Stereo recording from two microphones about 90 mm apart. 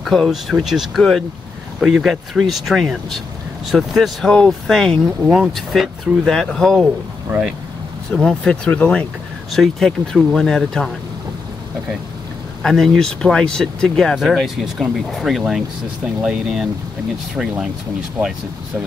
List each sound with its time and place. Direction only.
0.0 s speech: centre (ahead or behind)
7.2 s speech: 20° right (ahead or behind)
8.1 s speech: 10° left (ahead or behind)
9.5 s speech: 5° left (ahead or behind)
12.6 s speech: 5° left (ahead or behind)